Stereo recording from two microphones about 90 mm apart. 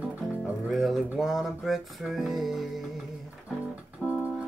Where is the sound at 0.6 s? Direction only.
Centre (ahead or behind).